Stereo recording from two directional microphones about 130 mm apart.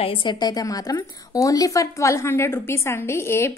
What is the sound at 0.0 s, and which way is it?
A woman's voice, 40° left (ahead or behind).